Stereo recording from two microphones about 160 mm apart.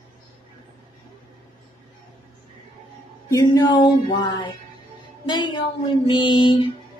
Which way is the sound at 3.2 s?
20° left (ahead or behind).